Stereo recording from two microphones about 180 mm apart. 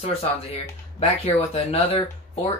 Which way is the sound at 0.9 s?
35° left (ahead or behind).